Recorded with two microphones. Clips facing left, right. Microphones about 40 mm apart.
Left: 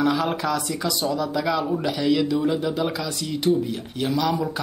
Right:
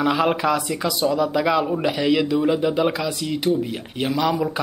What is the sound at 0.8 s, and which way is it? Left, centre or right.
A man's voice, centre.